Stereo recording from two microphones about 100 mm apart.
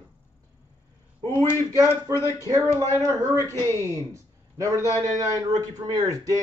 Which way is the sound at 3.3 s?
30° left (ahead or behind).